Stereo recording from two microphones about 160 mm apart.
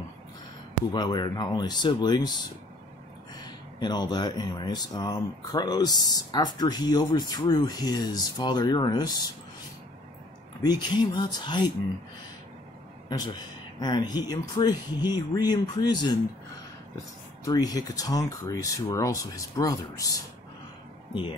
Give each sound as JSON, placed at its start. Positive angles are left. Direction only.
{"t": 0.9, "sound": "speech", "side_deg": 25}
{"t": 10.6, "sound": "speech", "side_deg": 25}
{"t": 13.2, "sound": "speech", "side_deg": 25}
{"t": 17.5, "sound": "speech", "side_deg": 25}